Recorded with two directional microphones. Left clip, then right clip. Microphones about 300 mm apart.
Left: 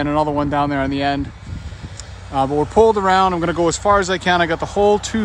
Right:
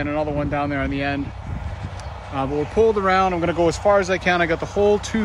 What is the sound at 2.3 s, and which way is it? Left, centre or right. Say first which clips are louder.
Speech: left 5 dB; centre.